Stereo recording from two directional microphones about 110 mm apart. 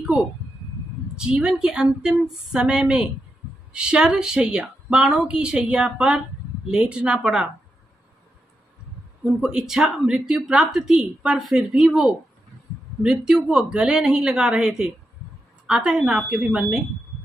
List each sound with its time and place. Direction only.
0.0 s a sound: 10° right (ahead or behind)
1.1 s speech: 10° right (ahead or behind)
9.4 s a woman's voice: 5° right (ahead or behind)